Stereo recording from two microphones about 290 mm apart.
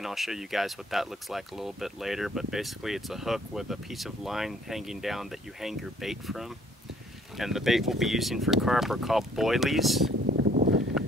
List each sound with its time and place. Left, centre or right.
0.0 s speech: centre
10.2 s boat: right